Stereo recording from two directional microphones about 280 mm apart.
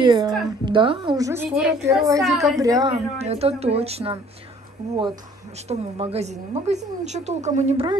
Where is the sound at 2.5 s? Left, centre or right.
Centre.